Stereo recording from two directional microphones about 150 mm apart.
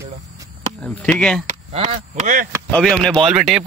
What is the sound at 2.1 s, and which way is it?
Speech, 55° right (ahead or behind).